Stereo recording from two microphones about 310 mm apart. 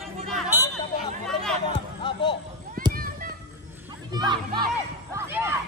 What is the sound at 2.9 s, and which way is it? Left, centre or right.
Children playing, right.